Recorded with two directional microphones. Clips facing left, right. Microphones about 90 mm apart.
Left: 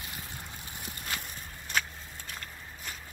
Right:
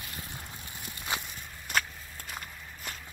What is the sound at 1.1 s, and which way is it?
Walk, 20° right (ahead or behind).